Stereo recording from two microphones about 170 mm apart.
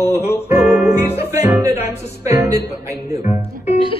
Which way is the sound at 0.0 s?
40° left (ahead or behind).